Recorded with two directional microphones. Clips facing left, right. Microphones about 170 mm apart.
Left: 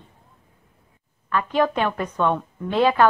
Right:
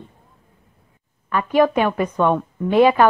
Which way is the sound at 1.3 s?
10° right (ahead or behind).